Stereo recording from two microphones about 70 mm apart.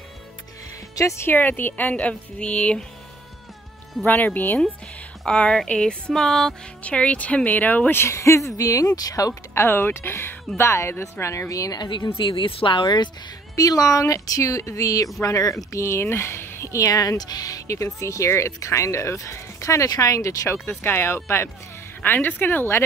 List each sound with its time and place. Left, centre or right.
0.9 s speech: left
1.3 s a woman's voice: left
4.0 s a woman's voice: left
5.2 s speech: centre
6.8 s speech: centre; by 9.4 s left
9.5 s speech: left
12.8 s a woman's voice: left
13.6 s speech: left
16.7 s a woman's voice: left